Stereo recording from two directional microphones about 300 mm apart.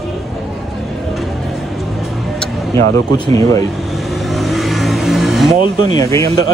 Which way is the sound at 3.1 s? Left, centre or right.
Centre.